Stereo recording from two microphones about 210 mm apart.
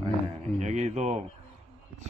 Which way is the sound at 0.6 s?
35° right (ahead or behind).